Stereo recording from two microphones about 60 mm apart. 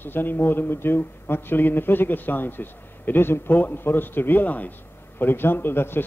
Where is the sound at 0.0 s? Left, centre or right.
Left.